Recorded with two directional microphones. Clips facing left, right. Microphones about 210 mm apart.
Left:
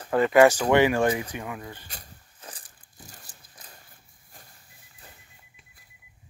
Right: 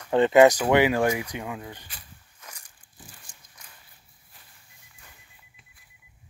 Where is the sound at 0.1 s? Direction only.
25° right (ahead or behind).